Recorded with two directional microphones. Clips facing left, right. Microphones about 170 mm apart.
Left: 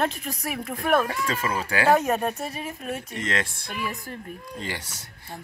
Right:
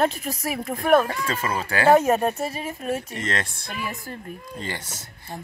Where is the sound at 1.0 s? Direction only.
10° left (ahead or behind).